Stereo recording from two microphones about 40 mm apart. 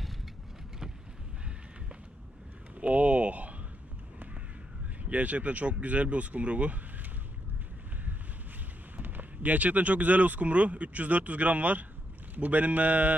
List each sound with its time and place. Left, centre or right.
2.8 s a sound: right
5.1 s speech: right
9.4 s speech: right